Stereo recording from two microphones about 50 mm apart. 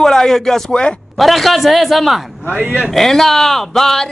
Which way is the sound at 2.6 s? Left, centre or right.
Right.